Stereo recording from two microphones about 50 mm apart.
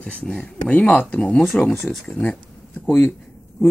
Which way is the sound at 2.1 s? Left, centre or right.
Left.